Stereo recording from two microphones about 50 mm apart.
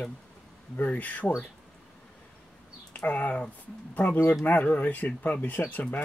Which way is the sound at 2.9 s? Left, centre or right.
Left.